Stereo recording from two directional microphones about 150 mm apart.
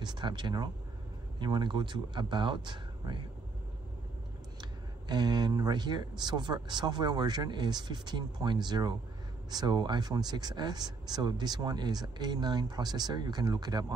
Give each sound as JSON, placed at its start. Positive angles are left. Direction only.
{"t": 0.0, "sound": "speech", "side_deg": -30}
{"t": 4.6, "sound": "speech", "side_deg": -30}